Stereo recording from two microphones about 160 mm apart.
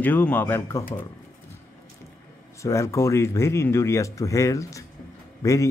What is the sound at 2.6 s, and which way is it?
Speech, 20° left (ahead or behind).